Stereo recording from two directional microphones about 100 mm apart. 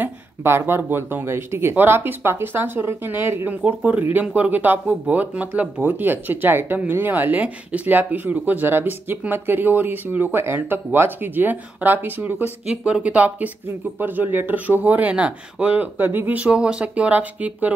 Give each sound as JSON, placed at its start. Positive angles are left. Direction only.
{"t": 0.0, "sound": "speech", "side_deg": -25}